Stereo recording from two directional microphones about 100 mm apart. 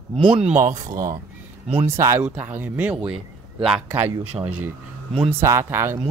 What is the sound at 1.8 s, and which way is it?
Speech, 25° right (ahead or behind).